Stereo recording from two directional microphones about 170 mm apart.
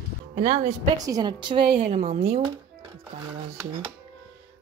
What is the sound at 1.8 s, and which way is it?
Speech, 45° right (ahead or behind).